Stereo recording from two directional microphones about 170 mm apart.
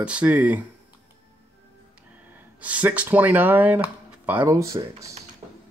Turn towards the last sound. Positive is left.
turn(degrees=-20)  # may be behind; listen again after turning